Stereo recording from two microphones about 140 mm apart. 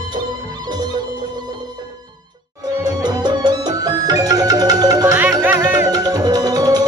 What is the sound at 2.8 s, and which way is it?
Music, 30° right (ahead or behind).